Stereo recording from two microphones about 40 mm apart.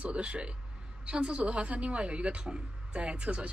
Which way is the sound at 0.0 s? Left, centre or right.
Right.